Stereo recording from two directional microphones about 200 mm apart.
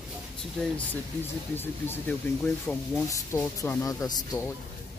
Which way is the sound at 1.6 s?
10° left (ahead or behind).